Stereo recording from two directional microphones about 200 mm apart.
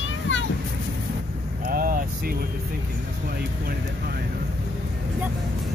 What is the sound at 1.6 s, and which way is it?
Vehicle, 45° right (ahead or behind).